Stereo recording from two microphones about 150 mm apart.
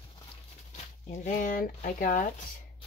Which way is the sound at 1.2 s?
60° left (ahead or behind).